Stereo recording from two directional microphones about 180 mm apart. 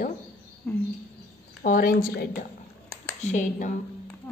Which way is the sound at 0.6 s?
10° left (ahead or behind).